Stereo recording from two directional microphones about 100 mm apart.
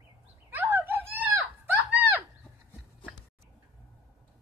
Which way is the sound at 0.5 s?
20° right (ahead or behind).